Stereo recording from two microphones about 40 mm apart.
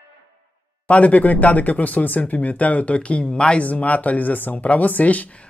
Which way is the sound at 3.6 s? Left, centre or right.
Left.